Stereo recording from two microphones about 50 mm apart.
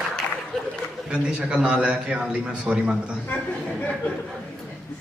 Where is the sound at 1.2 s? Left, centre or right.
Centre.